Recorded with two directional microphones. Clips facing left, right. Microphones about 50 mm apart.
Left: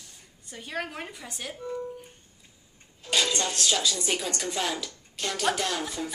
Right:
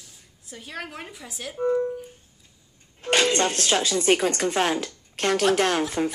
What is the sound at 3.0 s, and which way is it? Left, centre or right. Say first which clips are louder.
Speech: right 6 dB; right.